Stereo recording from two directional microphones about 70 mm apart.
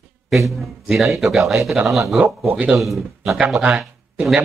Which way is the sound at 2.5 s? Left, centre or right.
Right.